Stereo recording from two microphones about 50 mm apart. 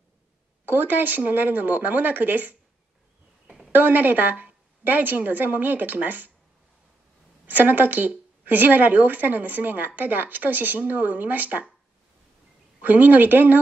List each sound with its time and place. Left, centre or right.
0.7 s a woman's voice: right
3.7 s a woman's voice: right
7.4 s a woman's voice: right
12.8 s a woman's voice: right